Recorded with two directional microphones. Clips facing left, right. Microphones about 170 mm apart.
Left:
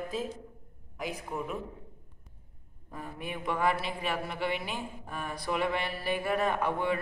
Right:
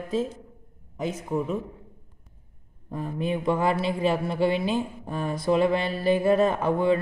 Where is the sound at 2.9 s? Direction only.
20° right (ahead or behind).